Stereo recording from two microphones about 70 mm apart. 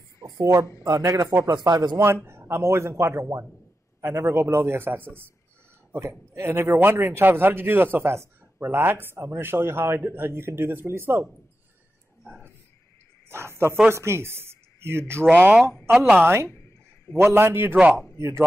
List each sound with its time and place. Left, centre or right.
0.4 s speech: right
1.5 s speech: right
2.2 s a man's voice: right
5.9 s a man's voice: right
13.3 s a man's voice: right
16.4 s a sound: left
17.2 s a man's voice: right